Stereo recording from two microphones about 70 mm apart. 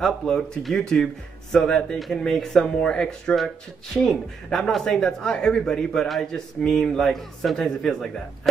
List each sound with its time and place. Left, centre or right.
0.0 s speech: centre